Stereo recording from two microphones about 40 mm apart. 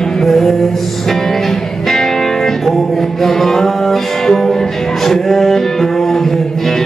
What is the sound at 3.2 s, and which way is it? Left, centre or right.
Mantra, centre.